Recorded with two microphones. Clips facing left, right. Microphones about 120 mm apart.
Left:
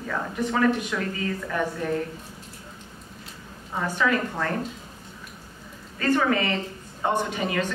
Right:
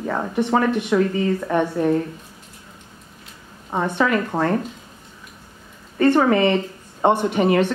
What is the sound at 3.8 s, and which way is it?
Speech, 30° right (ahead or behind).